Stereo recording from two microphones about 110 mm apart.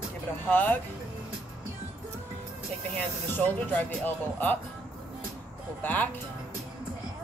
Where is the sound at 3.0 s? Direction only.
15° left (ahead or behind).